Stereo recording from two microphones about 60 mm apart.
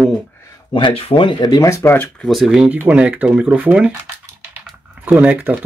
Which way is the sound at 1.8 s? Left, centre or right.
Left.